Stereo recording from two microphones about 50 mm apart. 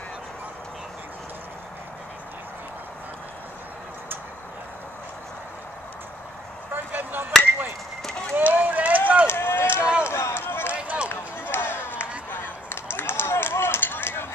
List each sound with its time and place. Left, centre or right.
6.7 s a sound: right
8.4 s run: right
9.3 s run: left
10.0 s run: left
10.4 s run: left
10.7 s run: right
11.1 s run: left